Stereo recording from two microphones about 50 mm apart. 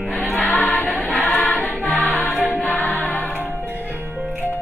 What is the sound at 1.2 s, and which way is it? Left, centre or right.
Music, left.